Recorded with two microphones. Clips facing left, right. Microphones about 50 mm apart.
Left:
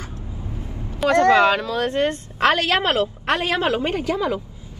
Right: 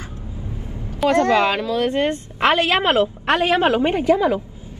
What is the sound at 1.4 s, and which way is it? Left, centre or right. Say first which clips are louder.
A woman's voice: left 1 dB; right.